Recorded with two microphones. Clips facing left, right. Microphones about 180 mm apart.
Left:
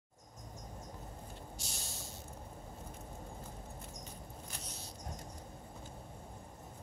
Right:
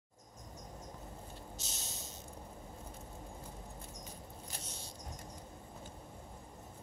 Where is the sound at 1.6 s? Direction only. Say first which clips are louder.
Left 1 dB; 20° right (ahead or behind).